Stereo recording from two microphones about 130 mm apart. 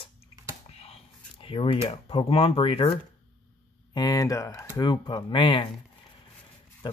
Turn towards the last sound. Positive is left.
turn(degrees=35)  # may be behind; listen again after turning